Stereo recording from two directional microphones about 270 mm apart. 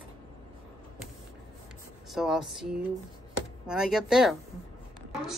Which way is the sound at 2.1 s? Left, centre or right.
Centre.